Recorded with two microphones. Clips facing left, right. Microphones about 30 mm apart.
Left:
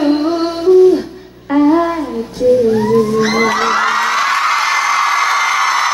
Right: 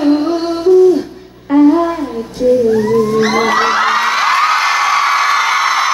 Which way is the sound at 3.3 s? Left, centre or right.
Centre.